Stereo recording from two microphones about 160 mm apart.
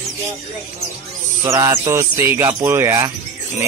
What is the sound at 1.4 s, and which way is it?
Speech, 20° right (ahead or behind).